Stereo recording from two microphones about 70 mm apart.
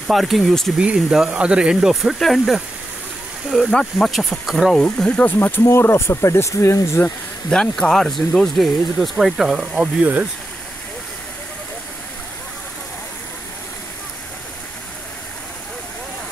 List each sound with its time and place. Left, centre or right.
0.1 s speech: centre
0.7 s speech: centre
3.7 s speech: centre
4.9 s speech: centre
5.7 s speech: left
7.4 s speech: centre